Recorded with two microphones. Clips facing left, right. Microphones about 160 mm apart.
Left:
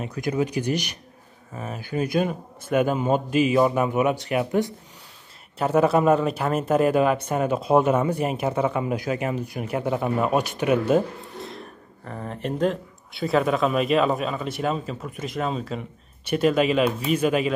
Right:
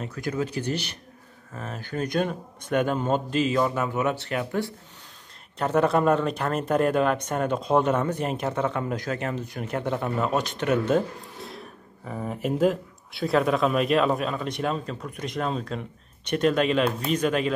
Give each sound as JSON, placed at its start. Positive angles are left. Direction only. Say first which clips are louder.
{"t": 0.0, "sound": "speech", "louder": "left 4 dB", "side_deg": 15}
{"t": 5.6, "sound": "speech", "louder": "left 2 dB", "side_deg": 5}